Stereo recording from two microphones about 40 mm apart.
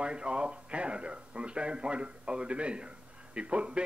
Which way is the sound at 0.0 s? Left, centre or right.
Right.